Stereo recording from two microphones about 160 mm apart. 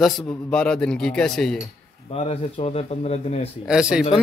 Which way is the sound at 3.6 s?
5° right (ahead or behind).